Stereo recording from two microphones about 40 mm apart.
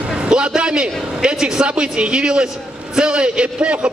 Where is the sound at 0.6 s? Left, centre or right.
Right.